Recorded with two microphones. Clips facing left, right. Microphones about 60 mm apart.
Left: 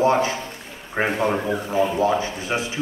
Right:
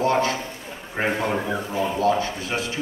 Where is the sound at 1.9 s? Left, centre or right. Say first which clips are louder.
Left 1 dB; centre.